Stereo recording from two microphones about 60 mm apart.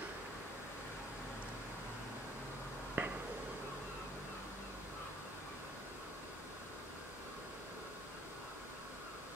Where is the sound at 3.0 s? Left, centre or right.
Right.